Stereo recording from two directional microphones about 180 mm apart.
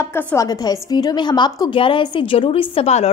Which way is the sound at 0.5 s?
20° left (ahead or behind).